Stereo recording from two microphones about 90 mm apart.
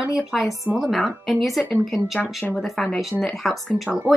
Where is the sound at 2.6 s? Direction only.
5° left (ahead or behind).